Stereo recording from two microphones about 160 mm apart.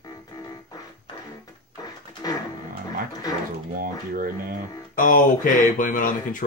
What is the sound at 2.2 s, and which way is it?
Music, 25° left (ahead or behind).